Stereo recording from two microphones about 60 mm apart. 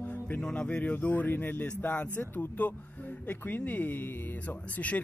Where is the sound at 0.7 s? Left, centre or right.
Left.